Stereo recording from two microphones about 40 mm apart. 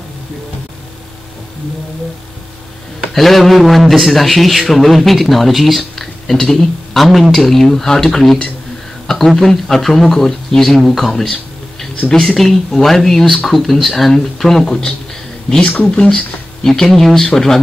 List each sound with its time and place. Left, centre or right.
3.1 s a man's voice: centre
7.1 s speech: centre
7.3 s speech: centre
9.0 s a sound: centre
9.4 s speech: centre